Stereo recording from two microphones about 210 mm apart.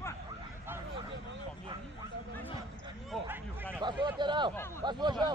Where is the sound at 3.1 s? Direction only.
Centre (ahead or behind).